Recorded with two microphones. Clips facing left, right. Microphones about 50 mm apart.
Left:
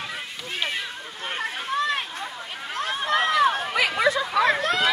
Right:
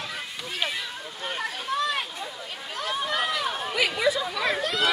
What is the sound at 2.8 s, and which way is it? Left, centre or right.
Chatter, left.